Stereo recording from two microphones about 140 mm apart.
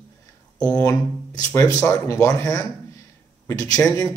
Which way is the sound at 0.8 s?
25° left (ahead or behind).